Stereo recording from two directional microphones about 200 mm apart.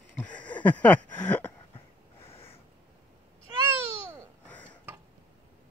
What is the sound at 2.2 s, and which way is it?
Snort, 30° left (ahead or behind).